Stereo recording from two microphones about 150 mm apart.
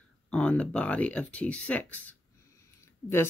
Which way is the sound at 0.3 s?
5° left (ahead or behind).